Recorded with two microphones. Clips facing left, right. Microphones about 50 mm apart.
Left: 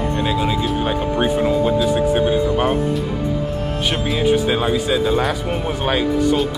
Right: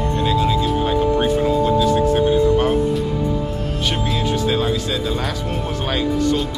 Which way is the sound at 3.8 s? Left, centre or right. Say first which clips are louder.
Left 2 dB; centre.